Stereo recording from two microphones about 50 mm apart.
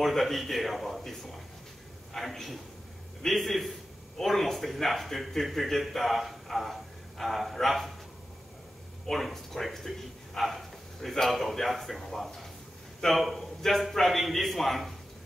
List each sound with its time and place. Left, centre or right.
0.0 s a man's voice: centre
9.0 s a man's voice: centre